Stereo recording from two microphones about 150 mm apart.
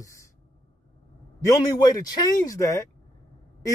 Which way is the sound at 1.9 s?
20° left (ahead or behind).